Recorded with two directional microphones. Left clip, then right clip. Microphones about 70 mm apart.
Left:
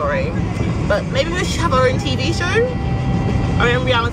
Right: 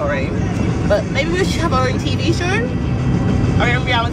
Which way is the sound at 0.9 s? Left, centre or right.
Centre.